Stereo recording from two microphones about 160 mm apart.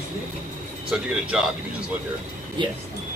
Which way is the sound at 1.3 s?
5° right (ahead or behind).